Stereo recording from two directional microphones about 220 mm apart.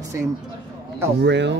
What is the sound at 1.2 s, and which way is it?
Speech, 55° right (ahead or behind).